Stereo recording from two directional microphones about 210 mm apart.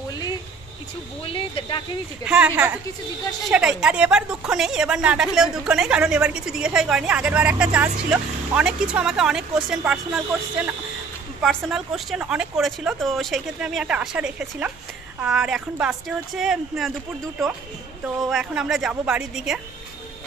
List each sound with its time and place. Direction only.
1.2 s speech: 25° left (ahead or behind)
2.2 s a woman's voice: 5° right (ahead or behind)
18.0 s speech: 5° right (ahead or behind)